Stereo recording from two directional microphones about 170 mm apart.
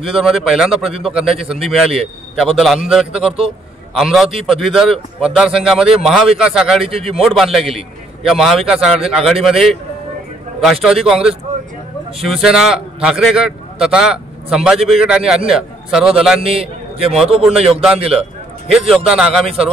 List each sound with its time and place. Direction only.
0.1 s a man's voice: centre (ahead or behind)
6.8 s a man's voice: 35° right (ahead or behind)
7.2 s a man's voice: centre (ahead or behind)
16.3 s a man's voice: 35° right (ahead or behind)
18.7 s a man's voice: centre (ahead or behind)
19.4 s a man's voice: 35° right (ahead or behind)